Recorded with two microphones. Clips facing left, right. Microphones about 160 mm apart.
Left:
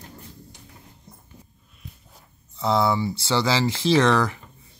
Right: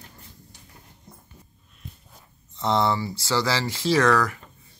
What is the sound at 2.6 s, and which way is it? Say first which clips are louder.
Speech: left 1 dB; 5° left (ahead or behind).